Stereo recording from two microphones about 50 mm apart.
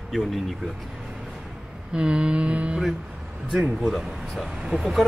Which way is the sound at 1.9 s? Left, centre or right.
Centre.